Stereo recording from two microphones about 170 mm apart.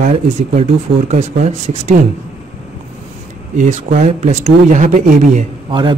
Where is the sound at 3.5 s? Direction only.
45° right (ahead or behind).